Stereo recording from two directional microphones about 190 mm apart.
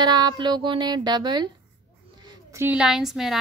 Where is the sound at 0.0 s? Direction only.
25° right (ahead or behind).